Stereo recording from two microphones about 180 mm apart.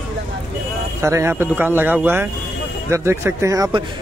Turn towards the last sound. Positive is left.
turn(degrees=-20)  # may be behind; listen again after turning